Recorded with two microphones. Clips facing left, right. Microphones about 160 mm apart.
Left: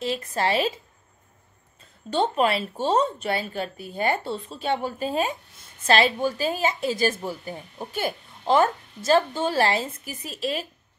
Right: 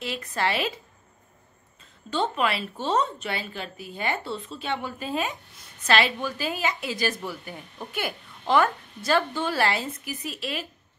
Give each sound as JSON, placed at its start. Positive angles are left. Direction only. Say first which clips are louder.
{"t": 0.0, "sound": "a woman's voice", "louder": "left 3 dB", "side_deg": 30}
{"t": 2.1, "sound": "a woman's voice", "louder": "left 4 dB", "side_deg": 40}